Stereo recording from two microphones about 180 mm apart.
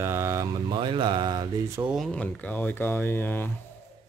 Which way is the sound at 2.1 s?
10° left (ahead or behind).